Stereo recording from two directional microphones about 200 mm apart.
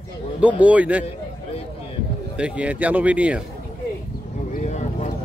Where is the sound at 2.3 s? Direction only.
5° right (ahead or behind).